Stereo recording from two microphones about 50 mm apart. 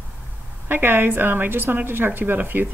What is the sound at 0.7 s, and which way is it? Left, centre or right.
A woman's voice, right.